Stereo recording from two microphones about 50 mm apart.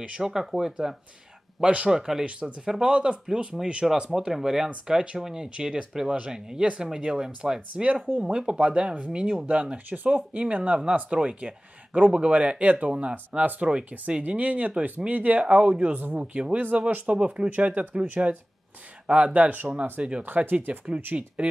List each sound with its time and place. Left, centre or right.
0.0 s speech: centre
1.6 s speech: right
1.9 s speech: centre
3.8 s speech: centre
7.7 s speech: right
9.5 s speech: right
15.9 s speech: right
16.2 s speech: right
20.2 s speech: right
21.1 s speech: right